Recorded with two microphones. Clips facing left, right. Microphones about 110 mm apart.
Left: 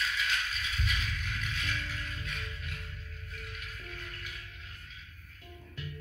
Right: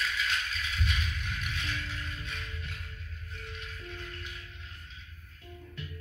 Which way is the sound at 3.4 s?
30° right (ahead or behind).